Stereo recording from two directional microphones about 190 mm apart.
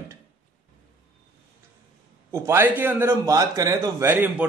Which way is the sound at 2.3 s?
15° right (ahead or behind).